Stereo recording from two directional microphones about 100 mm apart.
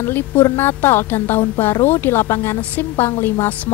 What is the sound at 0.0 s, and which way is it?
A woman's voice, 20° left (ahead or behind).